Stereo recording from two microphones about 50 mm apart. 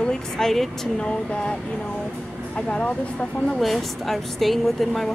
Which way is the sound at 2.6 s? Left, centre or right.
Left.